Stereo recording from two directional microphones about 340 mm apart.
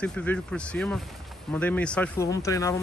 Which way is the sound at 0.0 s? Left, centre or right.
Centre.